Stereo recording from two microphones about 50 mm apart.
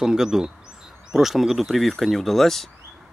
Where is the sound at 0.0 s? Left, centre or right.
Centre.